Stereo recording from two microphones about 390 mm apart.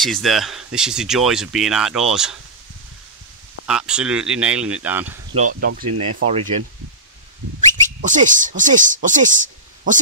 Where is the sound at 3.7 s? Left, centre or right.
Centre.